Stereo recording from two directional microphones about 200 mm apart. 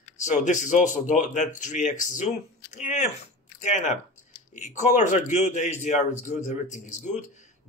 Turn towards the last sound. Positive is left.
turn(degrees=35)  # may be behind; listen again after turning